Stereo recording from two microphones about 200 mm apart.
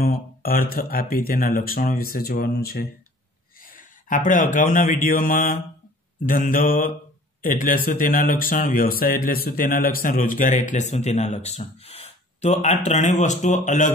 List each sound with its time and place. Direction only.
0.0 s speech: 45° left (ahead or behind)